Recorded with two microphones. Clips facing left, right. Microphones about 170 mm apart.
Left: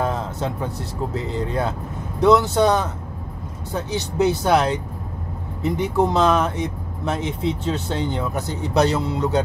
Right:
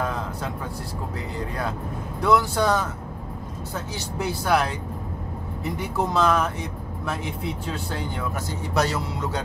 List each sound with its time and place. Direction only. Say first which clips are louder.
1.1 s speech: left 7 dB; 25° left (ahead or behind)